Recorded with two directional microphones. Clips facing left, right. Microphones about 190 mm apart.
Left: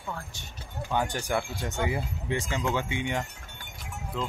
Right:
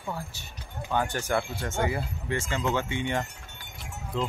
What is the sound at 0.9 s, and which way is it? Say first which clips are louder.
Speech: right 1 dB; 15° left (ahead or behind).